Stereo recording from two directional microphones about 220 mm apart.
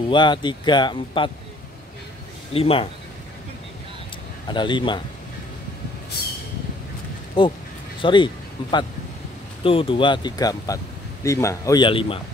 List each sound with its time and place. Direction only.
0.1 s speech: 20° left (ahead or behind)
2.5 s speech: 25° left (ahead or behind)
4.5 s speech: 20° left (ahead or behind)
7.4 s a man's voice: 20° left (ahead or behind)